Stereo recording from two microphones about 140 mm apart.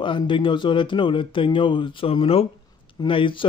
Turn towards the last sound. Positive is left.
turn(degrees=35)  # may be behind; listen again after turning